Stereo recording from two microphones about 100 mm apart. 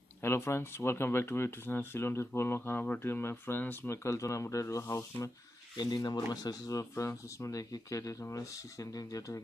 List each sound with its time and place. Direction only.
0.2 s speech: 25° left (ahead or behind)
5.8 s speech: 45° left (ahead or behind)